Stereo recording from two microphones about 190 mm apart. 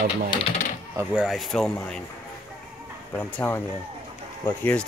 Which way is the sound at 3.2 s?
10° left (ahead or behind).